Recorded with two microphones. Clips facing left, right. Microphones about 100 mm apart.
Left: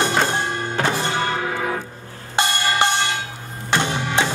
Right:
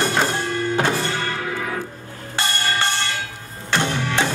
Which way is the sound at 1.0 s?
20° left (ahead or behind).